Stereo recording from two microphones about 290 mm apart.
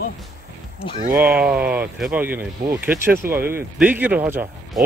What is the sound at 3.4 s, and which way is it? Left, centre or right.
Speech, right.